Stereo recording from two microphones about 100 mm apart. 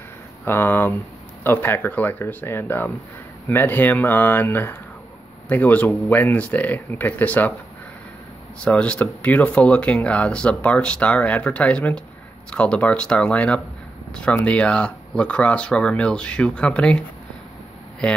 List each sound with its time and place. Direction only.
0.5 s speech: 20° left (ahead or behind)
8.6 s speech: 10° left (ahead or behind)
18.0 s speech: 10° left (ahead or behind)